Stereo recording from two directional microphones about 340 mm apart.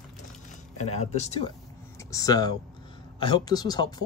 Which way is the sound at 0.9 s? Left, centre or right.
Centre.